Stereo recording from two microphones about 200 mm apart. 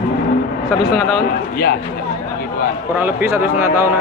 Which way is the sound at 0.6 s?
Centre (ahead or behind).